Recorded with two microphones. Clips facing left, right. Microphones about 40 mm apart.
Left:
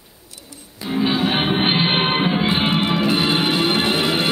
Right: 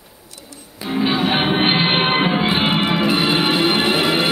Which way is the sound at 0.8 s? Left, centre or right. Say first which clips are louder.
Right 1 dB; centre.